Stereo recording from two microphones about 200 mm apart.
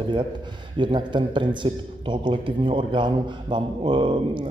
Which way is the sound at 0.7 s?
25° right (ahead or behind).